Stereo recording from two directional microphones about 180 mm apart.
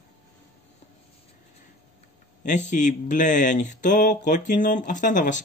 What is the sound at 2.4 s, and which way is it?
Speech, 40° left (ahead or behind).